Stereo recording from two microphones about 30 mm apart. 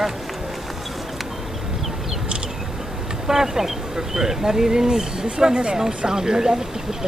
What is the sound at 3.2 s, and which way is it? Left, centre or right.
Speech, centre.